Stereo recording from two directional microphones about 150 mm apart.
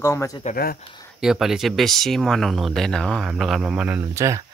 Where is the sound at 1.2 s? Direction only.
5° right (ahead or behind).